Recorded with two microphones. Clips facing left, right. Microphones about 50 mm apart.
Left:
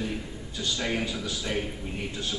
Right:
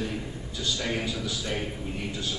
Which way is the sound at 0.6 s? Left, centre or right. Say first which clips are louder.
Left 1 dB; centre.